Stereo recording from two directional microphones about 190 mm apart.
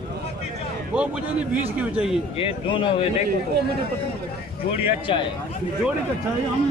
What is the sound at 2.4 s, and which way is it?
Speech, 30° left (ahead or behind).